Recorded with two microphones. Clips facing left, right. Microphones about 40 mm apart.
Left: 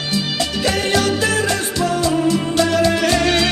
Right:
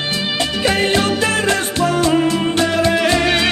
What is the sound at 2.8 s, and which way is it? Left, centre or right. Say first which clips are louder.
Music: right 1 dB; right.